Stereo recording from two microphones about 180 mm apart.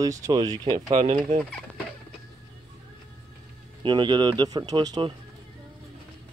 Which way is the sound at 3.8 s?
25° right (ahead or behind).